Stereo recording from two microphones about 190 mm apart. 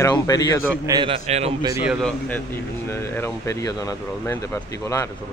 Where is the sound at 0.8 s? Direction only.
25° right (ahead or behind).